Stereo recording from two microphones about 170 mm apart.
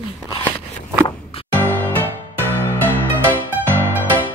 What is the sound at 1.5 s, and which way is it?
Music, 10° left (ahead or behind).